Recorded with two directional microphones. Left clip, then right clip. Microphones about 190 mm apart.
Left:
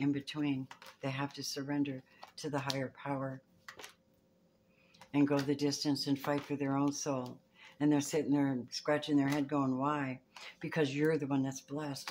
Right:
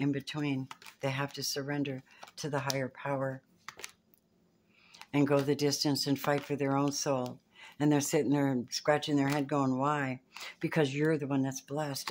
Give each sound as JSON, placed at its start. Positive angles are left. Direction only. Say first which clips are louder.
{"t": 0.0, "sound": "speech", "louder": "right 1 dB", "side_deg": -45}
{"t": 3.6, "sound": "dishes", "louder": "right 5 dB", "side_deg": -25}
{"t": 5.1, "sound": "speech", "louder": "right 4 dB", "side_deg": -50}